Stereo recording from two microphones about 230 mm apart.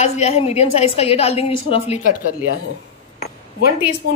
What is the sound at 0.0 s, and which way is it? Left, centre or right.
A woman's voice, left.